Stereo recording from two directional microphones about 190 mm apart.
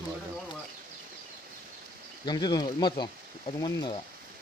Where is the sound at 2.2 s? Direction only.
20° left (ahead or behind).